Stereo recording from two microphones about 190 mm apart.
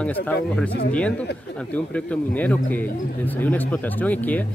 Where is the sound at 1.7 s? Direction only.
5° left (ahead or behind).